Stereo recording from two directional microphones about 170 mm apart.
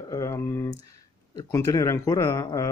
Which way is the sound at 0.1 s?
20° left (ahead or behind).